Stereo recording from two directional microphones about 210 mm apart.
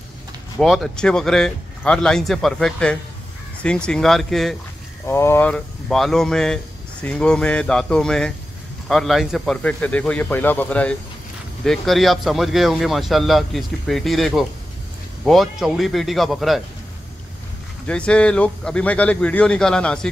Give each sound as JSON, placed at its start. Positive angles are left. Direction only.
{"t": 0.6, "sound": "speech", "side_deg": 0}
{"t": 5.0, "sound": "speech", "side_deg": 10}
{"t": 17.8, "sound": "speech", "side_deg": 5}